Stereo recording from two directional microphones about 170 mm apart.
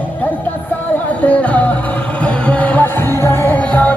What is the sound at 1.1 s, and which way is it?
Music, 10° left (ahead or behind).